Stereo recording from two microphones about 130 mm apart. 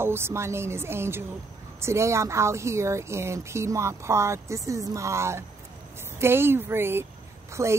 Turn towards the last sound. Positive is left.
turn(degrees=-20)  # may be behind; listen again after turning